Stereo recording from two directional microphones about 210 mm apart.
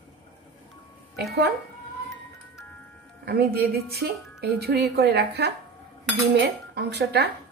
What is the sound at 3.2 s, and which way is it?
Speech, 45° right (ahead or behind).